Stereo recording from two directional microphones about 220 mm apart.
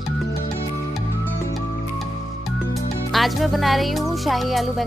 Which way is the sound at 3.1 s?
Centre (ahead or behind).